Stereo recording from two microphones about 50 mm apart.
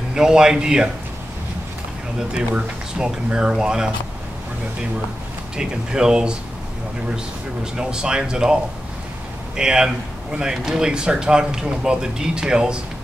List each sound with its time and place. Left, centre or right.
0.1 s speech: centre
2.1 s speech: centre
5.6 s speech: centre
7.7 s speech: centre
9.6 s speech: centre